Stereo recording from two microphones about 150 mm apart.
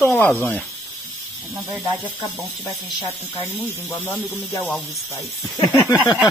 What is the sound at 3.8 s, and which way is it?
Speech, 15° left (ahead or behind).